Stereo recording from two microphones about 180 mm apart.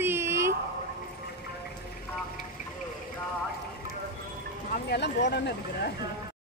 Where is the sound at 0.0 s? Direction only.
15° right (ahead or behind).